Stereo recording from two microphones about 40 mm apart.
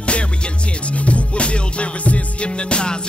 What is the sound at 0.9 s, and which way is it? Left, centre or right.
Music, left.